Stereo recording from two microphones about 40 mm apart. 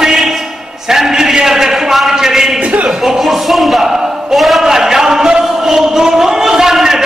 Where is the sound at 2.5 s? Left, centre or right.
Right.